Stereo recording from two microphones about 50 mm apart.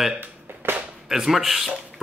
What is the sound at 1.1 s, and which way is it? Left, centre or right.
Speech, centre.